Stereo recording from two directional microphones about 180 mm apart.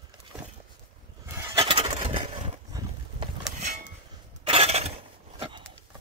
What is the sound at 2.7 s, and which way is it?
Horse, 20° right (ahead or behind).